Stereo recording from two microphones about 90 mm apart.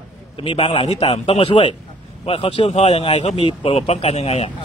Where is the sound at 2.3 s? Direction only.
90° left.